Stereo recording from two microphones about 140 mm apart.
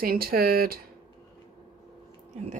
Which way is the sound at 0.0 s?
90° right.